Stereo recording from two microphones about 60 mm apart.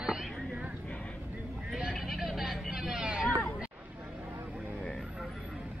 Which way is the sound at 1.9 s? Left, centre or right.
Centre.